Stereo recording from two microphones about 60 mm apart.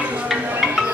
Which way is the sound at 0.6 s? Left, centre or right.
Centre.